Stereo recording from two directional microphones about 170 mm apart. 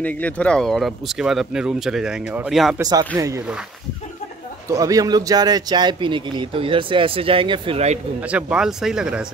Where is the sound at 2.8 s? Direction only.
20° right (ahead or behind).